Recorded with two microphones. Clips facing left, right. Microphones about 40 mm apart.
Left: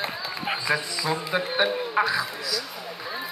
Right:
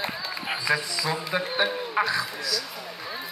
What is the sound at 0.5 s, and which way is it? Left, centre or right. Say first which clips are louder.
Speech: right 1 dB; left.